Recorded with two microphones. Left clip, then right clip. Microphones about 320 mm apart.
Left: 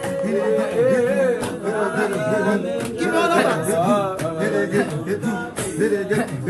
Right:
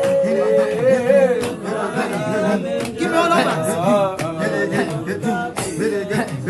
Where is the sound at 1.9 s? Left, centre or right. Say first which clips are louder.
Even; centre.